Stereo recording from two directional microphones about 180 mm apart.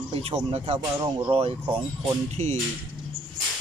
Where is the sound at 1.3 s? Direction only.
35° right (ahead or behind).